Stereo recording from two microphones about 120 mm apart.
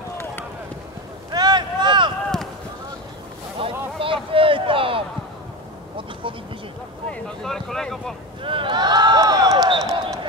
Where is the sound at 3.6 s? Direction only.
50° right (ahead or behind).